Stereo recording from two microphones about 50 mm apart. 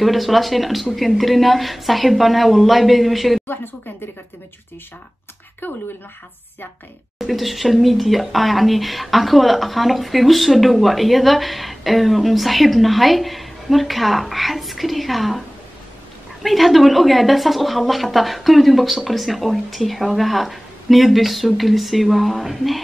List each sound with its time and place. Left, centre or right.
0.0 s speech: centre
5.6 s speech: left
7.2 s speech: centre
16.4 s speech: centre